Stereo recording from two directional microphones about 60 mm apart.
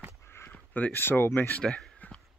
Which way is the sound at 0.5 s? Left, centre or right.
Left.